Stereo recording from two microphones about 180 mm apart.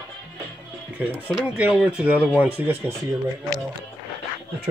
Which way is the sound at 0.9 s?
10° right (ahead or behind).